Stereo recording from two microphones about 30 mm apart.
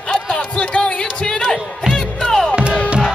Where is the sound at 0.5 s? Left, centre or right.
Left.